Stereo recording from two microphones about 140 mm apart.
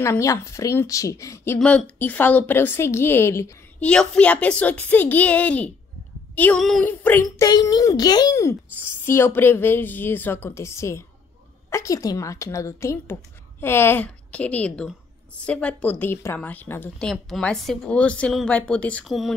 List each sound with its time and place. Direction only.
0.0 s a child's voice: 20° left (ahead or behind)
1.6 s a woman's voice: 10° left (ahead or behind)
3.8 s a woman's voice: 5° left (ahead or behind)
6.6 s speech: centre (ahead or behind)
6.9 s a child's voice: 15° left (ahead or behind)
17.0 s a woman's voice: centre (ahead or behind)